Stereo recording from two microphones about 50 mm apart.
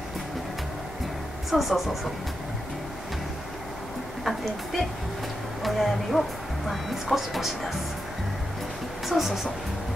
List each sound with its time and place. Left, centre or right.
1.5 s speech: centre
4.2 s speech: centre
9.0 s speech: centre